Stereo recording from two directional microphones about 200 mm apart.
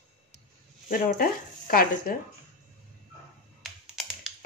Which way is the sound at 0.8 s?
45° left (ahead or behind).